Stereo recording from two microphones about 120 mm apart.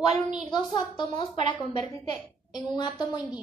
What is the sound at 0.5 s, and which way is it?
Speech, 40° left (ahead or behind).